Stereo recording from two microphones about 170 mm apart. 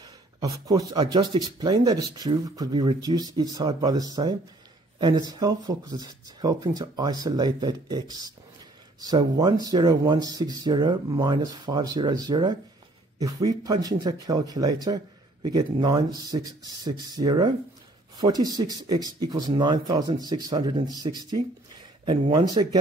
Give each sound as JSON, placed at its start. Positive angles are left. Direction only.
{"t": 0.0, "sound": "speech", "side_deg": -20}